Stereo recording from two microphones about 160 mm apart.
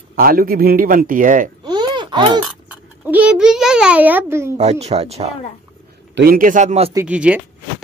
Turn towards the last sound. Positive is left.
turn(degrees=-10)  # may be behind; listen again after turning